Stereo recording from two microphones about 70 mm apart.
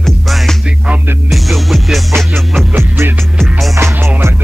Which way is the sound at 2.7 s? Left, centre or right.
Right.